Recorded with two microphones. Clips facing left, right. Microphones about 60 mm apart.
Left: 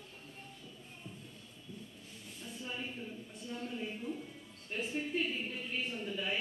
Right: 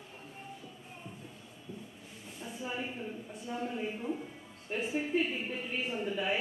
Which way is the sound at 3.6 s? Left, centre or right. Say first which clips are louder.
Right 4 dB; centre.